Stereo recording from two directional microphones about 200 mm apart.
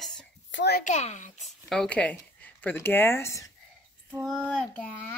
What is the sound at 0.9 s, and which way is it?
Speech, 35° left (ahead or behind).